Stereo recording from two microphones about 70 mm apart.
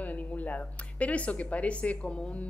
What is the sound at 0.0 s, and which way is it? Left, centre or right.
Speech, left.